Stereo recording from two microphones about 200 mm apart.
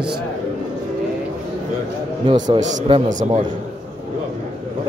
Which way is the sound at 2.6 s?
30° right (ahead or behind).